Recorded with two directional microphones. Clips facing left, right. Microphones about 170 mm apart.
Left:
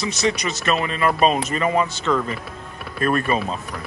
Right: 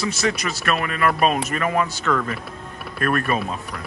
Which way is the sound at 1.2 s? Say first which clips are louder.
Left 3 dB; centre (ahead or behind).